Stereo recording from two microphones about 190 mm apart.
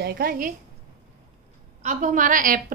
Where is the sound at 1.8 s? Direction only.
40° right (ahead or behind).